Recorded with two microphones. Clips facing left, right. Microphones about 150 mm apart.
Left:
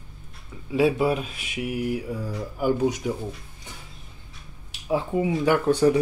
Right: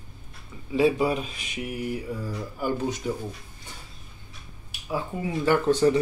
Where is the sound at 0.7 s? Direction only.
5° left (ahead or behind).